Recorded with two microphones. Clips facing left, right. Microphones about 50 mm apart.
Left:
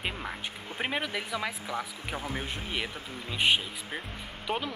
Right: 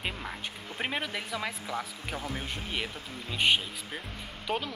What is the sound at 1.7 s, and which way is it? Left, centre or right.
Speech, centre.